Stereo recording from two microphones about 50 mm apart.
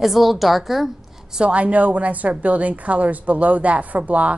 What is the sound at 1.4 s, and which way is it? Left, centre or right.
A woman's voice, right.